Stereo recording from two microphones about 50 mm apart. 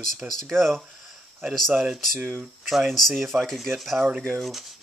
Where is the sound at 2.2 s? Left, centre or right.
Right.